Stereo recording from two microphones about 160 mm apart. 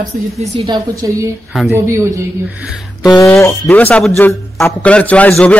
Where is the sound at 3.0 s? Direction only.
20° left (ahead or behind).